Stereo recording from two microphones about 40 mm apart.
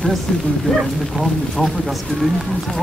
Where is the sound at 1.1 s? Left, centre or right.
Centre.